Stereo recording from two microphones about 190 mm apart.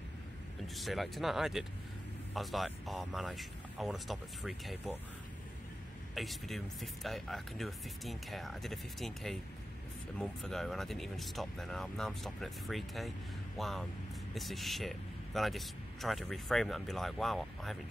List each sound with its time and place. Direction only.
0.7 s speech: centre (ahead or behind)
6.1 s speech: centre (ahead or behind)